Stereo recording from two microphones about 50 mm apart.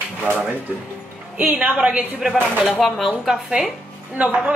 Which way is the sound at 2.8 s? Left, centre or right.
Centre.